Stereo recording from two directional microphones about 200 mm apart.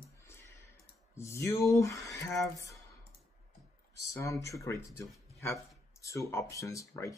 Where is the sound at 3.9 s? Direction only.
15° left (ahead or behind).